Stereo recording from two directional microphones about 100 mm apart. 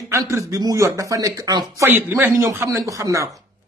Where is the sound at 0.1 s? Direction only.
30° right (ahead or behind).